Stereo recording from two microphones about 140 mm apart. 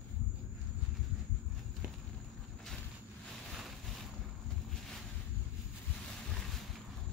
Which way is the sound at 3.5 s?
Centre (ahead or behind).